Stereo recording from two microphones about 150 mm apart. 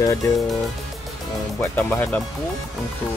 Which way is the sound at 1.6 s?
15° left (ahead or behind).